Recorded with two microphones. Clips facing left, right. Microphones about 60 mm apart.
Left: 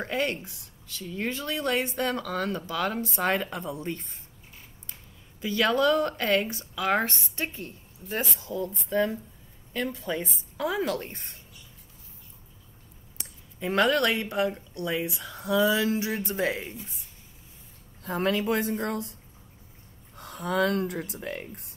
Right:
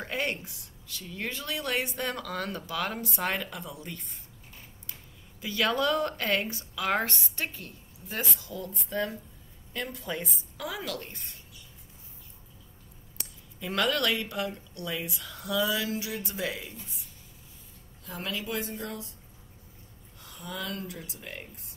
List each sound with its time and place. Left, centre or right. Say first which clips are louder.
0.4 s speech: left 2 dB; left
5.4 s speech: left 4 dB; left
13.2 s speech: left 6 dB; left
18.0 s speech: left 9 dB; left
20.2 s speech: left 12 dB; left